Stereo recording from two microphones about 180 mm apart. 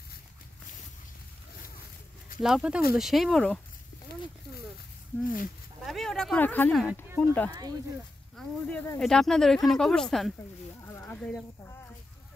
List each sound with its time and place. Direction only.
2.4 s speech: 5° right (ahead or behind)
5.2 s speech: 50° left (ahead or behind)
5.8 s speech: centre (ahead or behind)
10.9 s a sound: 10° left (ahead or behind)